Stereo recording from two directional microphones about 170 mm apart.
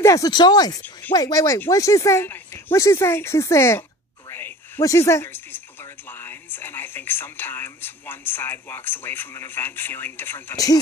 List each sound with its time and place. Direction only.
0.0 s speech: 20° left (ahead or behind)